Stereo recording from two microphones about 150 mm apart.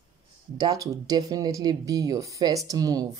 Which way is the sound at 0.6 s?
25° right (ahead or behind).